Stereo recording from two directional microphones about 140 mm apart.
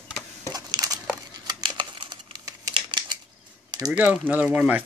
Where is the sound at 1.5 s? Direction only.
30° right (ahead or behind).